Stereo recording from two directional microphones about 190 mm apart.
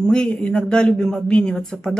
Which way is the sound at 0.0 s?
5° left (ahead or behind).